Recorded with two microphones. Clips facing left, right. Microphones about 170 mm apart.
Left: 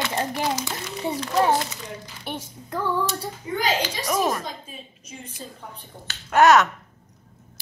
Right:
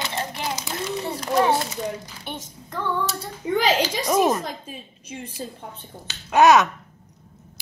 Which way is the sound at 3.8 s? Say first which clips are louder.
Right 4 dB; 25° right (ahead or behind).